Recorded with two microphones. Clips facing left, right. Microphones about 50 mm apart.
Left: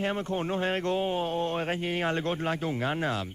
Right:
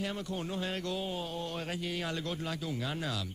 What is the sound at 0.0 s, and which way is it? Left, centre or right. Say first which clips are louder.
Speech: left 7 dB; left.